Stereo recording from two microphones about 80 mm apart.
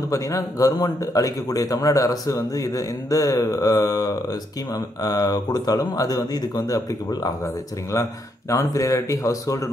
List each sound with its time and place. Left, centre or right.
0.1 s speech: left
7.4 s speech: left